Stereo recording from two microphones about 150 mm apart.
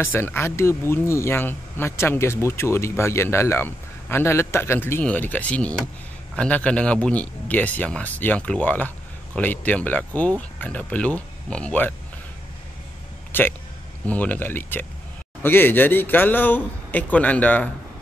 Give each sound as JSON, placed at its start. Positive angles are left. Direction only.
{"t": 0.0, "sound": "speech", "side_deg": 15}
{"t": 13.3, "sound": "speech", "side_deg": 15}